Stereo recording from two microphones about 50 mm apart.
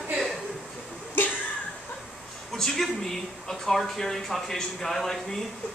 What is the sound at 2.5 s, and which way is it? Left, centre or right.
Speech, centre.